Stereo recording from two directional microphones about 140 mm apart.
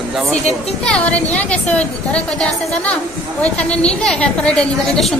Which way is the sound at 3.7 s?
5° left (ahead or behind).